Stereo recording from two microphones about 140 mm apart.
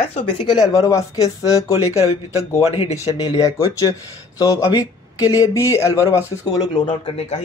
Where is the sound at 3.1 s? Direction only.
25° left (ahead or behind).